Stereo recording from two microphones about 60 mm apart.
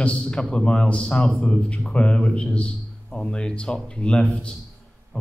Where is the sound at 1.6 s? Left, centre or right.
Centre.